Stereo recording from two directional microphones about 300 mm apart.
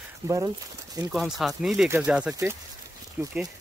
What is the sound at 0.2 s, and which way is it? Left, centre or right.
Speech, centre.